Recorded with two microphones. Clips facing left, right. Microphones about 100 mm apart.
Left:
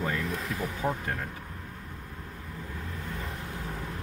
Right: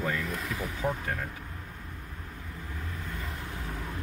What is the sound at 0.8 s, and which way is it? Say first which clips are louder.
Speech: even; 30° left (ahead or behind).